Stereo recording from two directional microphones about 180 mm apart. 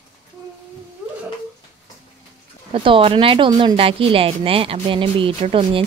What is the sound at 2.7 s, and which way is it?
A woman's voice, 30° right (ahead or behind).